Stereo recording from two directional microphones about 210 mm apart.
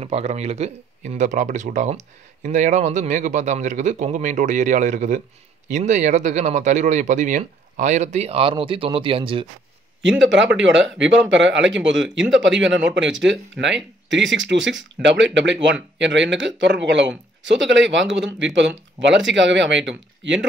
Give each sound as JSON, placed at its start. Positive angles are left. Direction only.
{"t": 0.0, "sound": "speech", "side_deg": -30}
{"t": 10.0, "sound": "speech", "side_deg": -60}